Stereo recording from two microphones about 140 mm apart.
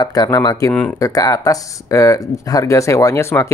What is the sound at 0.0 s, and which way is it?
Speech, 30° left (ahead or behind).